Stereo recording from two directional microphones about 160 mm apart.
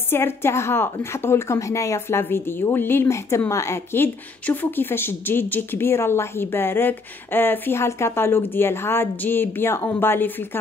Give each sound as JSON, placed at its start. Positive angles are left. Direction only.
{"t": 0.1, "sound": "a woman's voice", "side_deg": 15}